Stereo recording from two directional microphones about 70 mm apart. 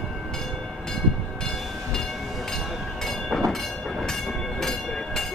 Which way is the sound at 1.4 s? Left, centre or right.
Centre.